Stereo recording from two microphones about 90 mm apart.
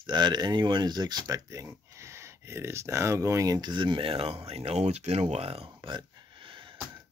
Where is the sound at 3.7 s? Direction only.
65° right (ahead or behind).